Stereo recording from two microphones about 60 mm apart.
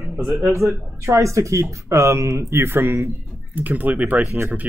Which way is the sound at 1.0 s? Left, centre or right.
Right.